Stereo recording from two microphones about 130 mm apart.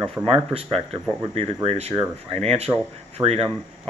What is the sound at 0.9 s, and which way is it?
Speech, 55° right (ahead or behind).